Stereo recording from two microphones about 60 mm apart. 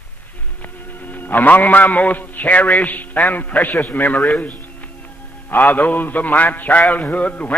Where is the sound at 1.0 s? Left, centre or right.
Left.